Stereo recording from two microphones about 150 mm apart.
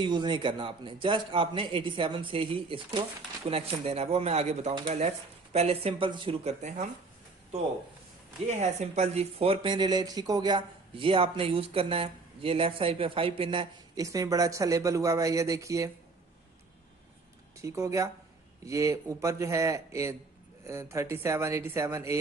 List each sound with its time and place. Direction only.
0.0 s speech: 30° right (ahead or behind)
6.4 s speech: 50° right (ahead or behind)
8.5 s speech: 50° right (ahead or behind)
14.0 s speech: 25° right (ahead or behind)
17.6 s speech: 20° right (ahead or behind)